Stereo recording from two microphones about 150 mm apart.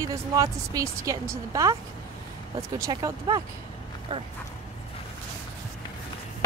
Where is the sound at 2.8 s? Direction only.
25° right (ahead or behind).